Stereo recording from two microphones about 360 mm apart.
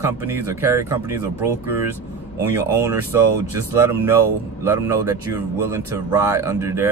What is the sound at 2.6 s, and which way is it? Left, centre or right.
Speech, centre.